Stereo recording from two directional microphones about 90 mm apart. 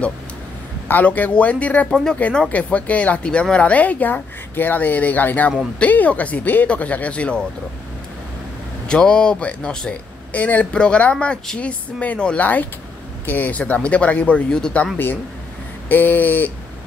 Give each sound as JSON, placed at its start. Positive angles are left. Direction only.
{"t": 0.8, "sound": "a man's voice", "side_deg": 20}
{"t": 8.8, "sound": "a man's voice", "side_deg": 10}
{"t": 15.9, "sound": "a sound", "side_deg": 20}